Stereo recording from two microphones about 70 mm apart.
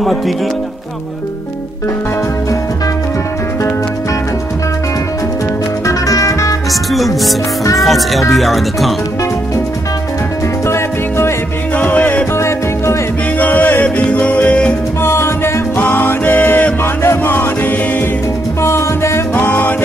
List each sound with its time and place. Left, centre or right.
5.9 s music: left
6.7 s music: centre
7.8 s speech: centre
10.7 s music: left
11.7 s music: left
12.4 s music: left
13.4 s music: left
15.0 s music: left
15.8 s music: left
18.6 s music: left
19.3 s music: left